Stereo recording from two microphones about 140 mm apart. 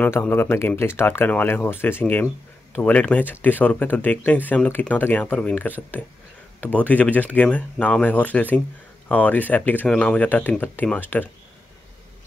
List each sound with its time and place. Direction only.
0.0 s speech: 15° left (ahead or behind)